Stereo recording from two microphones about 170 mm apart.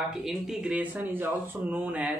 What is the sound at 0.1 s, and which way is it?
Speech, centre (ahead or behind).